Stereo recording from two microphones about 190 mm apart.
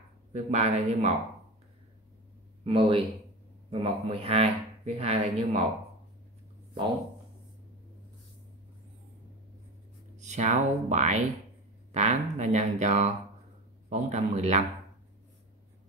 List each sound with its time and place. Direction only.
0.3 s a man's voice: 35° right (ahead or behind)
2.6 s a man's voice: 25° right (ahead or behind)
10.1 s a man's voice: 40° right (ahead or behind)